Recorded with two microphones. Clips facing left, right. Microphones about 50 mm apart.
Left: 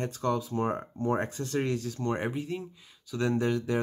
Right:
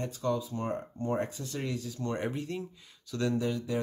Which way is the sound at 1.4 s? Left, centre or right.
Left.